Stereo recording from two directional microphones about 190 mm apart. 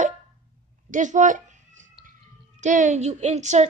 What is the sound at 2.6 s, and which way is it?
A woman's voice, 40° right (ahead or behind).